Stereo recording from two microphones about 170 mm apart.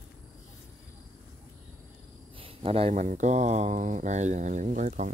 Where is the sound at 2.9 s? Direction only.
50° right (ahead or behind).